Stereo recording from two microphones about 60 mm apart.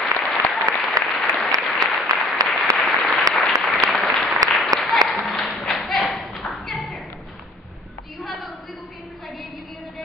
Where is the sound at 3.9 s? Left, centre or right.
Centre.